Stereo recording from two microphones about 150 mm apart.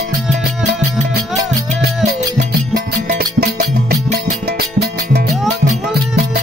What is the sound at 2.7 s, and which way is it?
Music, 90° right.